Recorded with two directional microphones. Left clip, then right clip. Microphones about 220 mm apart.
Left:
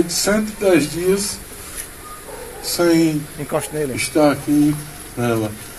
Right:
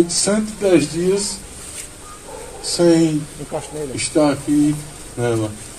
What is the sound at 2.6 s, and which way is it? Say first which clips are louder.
A man's voice: right 1 dB; 55° left (ahead or behind).